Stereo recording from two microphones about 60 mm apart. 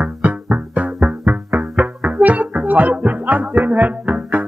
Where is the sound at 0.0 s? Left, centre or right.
Right.